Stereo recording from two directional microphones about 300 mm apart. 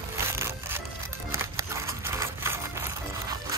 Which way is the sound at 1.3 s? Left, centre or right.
Centre.